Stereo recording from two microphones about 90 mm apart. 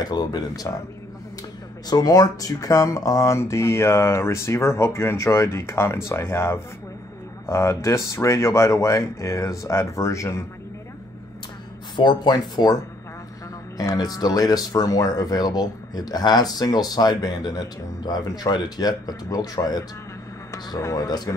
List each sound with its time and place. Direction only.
0.0 s speech: 50° left (ahead or behind)
1.9 s speech: 45° left (ahead or behind)
12.0 s speech: 55° left (ahead or behind)
13.7 s speech: 45° left (ahead or behind)